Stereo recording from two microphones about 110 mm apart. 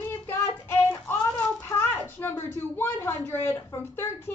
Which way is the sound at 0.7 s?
20° left (ahead or behind).